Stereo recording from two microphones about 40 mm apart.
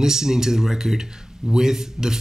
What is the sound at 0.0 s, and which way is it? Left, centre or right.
Speech, centre.